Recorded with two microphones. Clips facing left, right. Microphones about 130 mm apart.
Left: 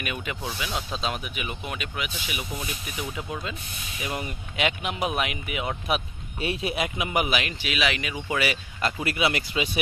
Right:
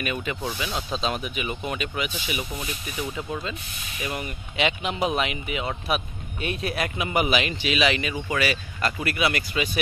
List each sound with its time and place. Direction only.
0.0 s speech: 5° left (ahead or behind)
4.6 s speech: 5° left (ahead or behind)
8.4 s speech: 20° left (ahead or behind)